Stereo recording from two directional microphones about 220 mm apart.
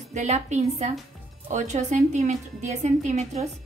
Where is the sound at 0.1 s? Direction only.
30° right (ahead or behind).